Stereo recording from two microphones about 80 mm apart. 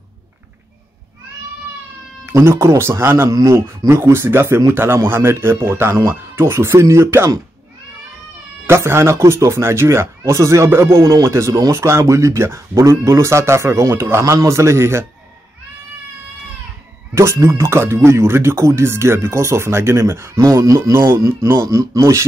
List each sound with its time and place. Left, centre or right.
2.2 s speech: right
3.3 s a man's voice: right
3.6 s speech: right
8.6 s speech: right
17.1 s speech: right